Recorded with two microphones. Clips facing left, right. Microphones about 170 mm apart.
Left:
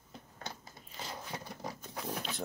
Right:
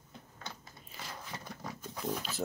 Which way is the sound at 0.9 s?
20° left (ahead or behind).